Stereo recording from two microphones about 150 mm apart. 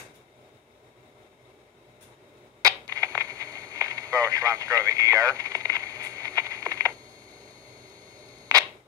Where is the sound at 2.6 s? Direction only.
25° right (ahead or behind).